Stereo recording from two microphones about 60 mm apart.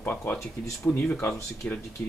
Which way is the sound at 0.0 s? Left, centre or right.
Left.